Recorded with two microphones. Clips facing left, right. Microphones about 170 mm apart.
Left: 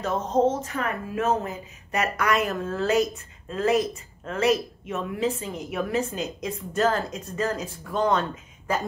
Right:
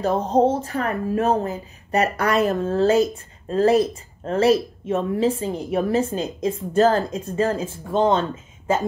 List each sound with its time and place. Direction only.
0.0 s speech: 35° right (ahead or behind)